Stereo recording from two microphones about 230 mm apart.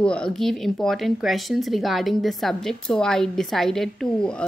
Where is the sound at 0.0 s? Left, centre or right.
Centre.